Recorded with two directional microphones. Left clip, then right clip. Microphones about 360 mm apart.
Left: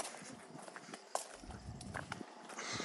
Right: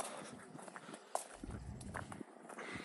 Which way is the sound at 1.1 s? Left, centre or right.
Centre.